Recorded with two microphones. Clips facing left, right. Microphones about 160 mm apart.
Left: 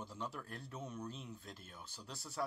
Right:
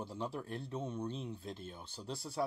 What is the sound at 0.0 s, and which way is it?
Speech, 30° right (ahead or behind).